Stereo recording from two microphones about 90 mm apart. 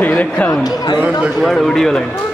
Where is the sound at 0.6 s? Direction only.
45° left (ahead or behind).